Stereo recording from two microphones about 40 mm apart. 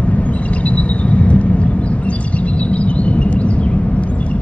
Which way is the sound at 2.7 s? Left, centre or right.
Left.